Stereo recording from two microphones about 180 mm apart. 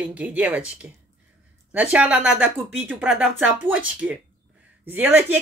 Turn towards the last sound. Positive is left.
turn(degrees=-10)  # may be behind; listen again after turning